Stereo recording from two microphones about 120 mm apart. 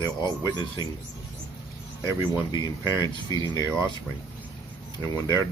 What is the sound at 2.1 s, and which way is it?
Speech, 40° left (ahead or behind).